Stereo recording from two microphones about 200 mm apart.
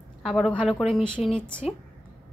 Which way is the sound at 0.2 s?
Centre (ahead or behind).